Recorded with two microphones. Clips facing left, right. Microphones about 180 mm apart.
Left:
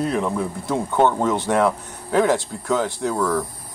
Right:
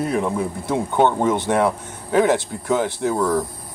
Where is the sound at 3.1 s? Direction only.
20° right (ahead or behind).